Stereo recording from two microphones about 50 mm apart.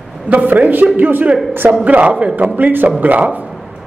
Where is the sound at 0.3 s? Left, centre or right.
Right.